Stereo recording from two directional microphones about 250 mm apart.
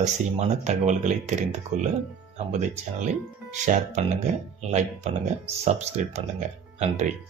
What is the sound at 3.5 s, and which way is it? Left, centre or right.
Speech, right.